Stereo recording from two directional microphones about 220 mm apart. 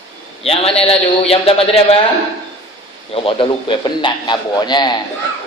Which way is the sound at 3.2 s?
25° left (ahead or behind).